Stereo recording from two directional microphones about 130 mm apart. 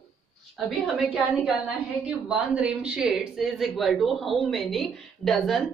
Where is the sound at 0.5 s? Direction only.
Centre (ahead or behind).